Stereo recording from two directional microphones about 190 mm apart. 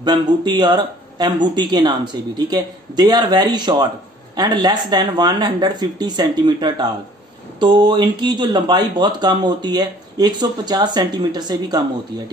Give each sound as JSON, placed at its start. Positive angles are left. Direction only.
{"t": 0.0, "sound": "speech", "side_deg": -20}